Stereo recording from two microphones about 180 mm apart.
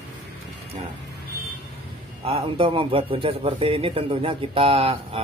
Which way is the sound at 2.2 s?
30° right (ahead or behind).